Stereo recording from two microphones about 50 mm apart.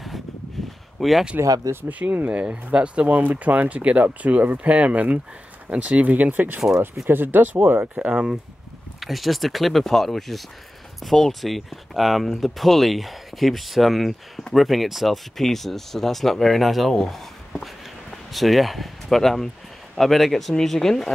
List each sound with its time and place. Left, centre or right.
0.6 s a sound: centre
0.9 s speech: centre
1.9 s speech: right
2.4 s speech: right
7.8 s speech: right
8.1 s speech: centre
9.0 s speech: centre